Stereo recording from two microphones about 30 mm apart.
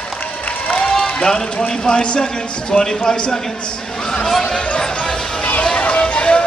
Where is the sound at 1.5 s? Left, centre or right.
Left.